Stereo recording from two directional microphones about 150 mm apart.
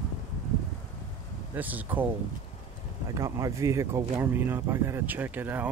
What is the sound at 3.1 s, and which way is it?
Speech, 20° right (ahead or behind).